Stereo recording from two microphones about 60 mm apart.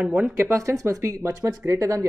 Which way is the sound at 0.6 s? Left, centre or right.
Right.